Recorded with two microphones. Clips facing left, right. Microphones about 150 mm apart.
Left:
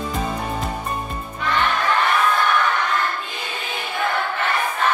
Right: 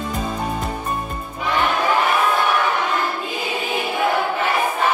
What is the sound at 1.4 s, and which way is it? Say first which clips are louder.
Crowd: right 2 dB; 5° right (ahead or behind).